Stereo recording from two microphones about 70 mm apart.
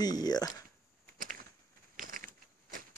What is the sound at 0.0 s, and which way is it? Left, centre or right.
Speech, left.